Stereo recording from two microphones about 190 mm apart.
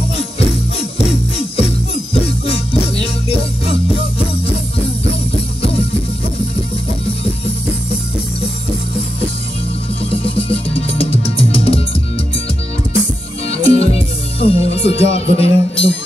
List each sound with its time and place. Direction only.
0.4 s jingle bell: 35° left (ahead or behind)
2.1 s music: 30° left (ahead or behind)
10.2 s music: 30° left (ahead or behind)
13.5 s music: 30° left (ahead or behind)